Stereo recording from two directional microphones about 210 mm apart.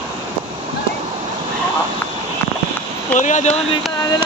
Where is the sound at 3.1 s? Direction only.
35° left (ahead or behind).